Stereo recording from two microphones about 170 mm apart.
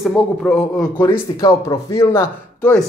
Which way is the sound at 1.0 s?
15° left (ahead or behind).